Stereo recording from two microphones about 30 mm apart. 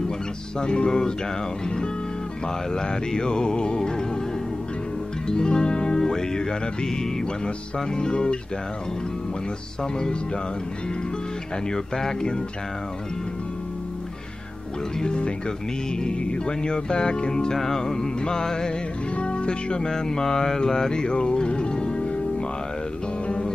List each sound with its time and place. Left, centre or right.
0.6 s speech: left
2.4 s speech: left
5.2 s music: left
7.4 s speech: left
9.9 s speech: left
11.7 s speech: centre
15.1 s speech: left
17.6 s speech: centre
19.1 s music: left
19.9 s music: left